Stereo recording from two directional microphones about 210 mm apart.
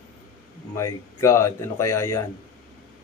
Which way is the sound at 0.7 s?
15° left (ahead or behind).